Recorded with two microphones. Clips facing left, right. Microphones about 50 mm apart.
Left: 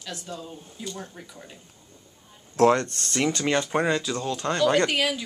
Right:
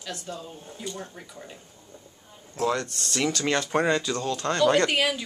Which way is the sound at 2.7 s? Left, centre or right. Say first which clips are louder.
Left 2 dB; left.